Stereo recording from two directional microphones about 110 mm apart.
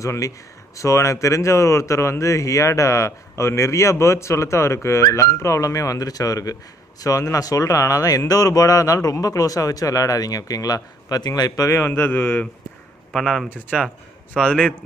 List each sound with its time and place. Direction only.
0.0 s speech: 30° left (ahead or behind)
13.1 s speech: centre (ahead or behind)